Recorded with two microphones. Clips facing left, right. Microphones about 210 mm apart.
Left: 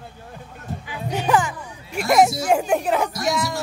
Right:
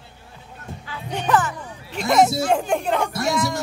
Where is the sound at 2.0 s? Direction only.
5° left (ahead or behind).